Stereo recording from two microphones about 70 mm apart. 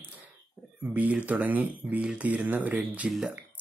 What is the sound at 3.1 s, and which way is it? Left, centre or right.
Speech, centre.